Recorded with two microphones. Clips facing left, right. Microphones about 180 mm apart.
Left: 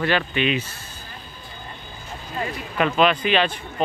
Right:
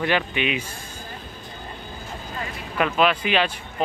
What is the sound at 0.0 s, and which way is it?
Speech, 15° right (ahead or behind).